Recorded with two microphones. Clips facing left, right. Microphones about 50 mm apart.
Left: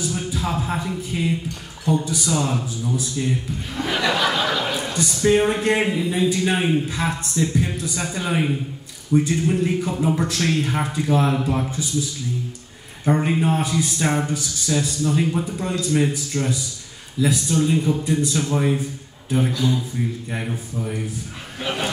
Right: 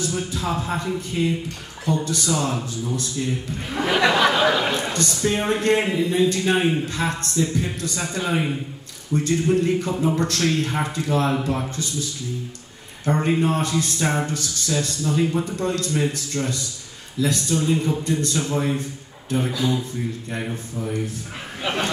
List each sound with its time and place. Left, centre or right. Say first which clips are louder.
0.0 s a man's voice: even; centre
4.0 s a sound: right 3 dB; centre
5.1 s a man's voice: left 6 dB; centre
13.0 s a man's voice: left 1 dB; centre
19.5 s a man's voice: left 1 dB; centre